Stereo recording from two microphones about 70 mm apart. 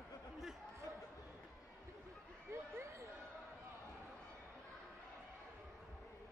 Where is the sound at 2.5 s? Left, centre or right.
Right.